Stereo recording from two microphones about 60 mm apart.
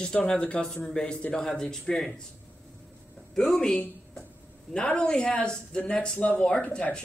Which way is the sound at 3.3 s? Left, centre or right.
Centre.